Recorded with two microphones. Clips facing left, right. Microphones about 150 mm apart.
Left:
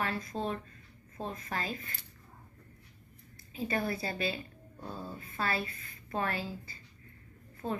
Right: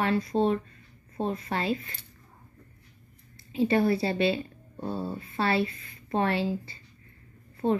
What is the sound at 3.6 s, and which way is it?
Speech, 30° right (ahead or behind).